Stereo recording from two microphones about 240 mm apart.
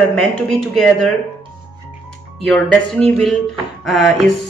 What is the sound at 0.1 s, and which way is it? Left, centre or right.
Speech, centre.